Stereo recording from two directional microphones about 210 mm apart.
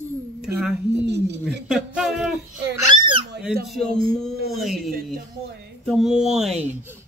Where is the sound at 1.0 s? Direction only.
55° right (ahead or behind).